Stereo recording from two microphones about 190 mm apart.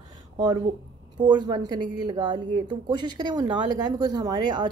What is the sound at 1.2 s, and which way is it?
Speech, 25° right (ahead or behind).